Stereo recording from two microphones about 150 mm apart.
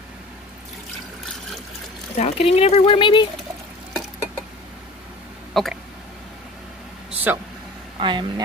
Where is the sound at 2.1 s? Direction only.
45° left (ahead or behind).